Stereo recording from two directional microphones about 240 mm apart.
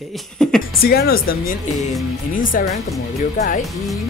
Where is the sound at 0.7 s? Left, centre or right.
Left.